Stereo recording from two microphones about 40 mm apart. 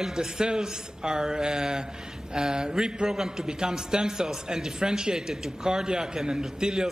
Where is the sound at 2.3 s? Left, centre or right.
Centre.